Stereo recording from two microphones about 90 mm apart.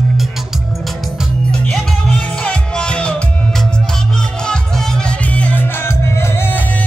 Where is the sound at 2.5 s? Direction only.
10° left (ahead or behind).